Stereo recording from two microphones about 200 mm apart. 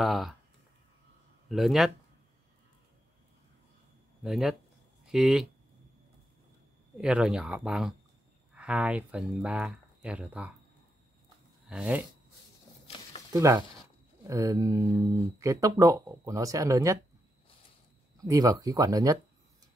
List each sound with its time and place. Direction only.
0.0 s speech: centre (ahead or behind)
1.5 s speech: centre (ahead or behind)
4.2 s speech: centre (ahead or behind)
7.0 s speech: 5° right (ahead or behind)
11.7 s speech: 5° right (ahead or behind)
13.3 s speech: 15° right (ahead or behind)
18.1 s speech: 15° right (ahead or behind)